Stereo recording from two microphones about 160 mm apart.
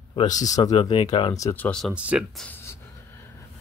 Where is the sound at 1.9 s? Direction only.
5° right (ahead or behind).